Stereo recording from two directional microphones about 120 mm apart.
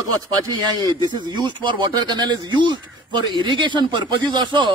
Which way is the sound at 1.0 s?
35° right (ahead or behind).